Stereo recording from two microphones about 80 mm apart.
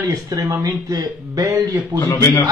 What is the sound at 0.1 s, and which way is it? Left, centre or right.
Speech, right.